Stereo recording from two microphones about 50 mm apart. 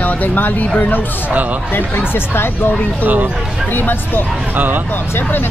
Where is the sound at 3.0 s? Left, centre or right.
Right.